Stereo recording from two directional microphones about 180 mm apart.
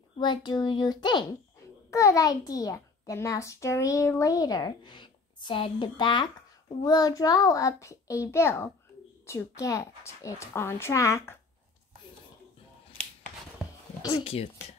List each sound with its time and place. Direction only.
0.2 s a child's voice: 25° left (ahead or behind)
14.1 s speech: 30° left (ahead or behind)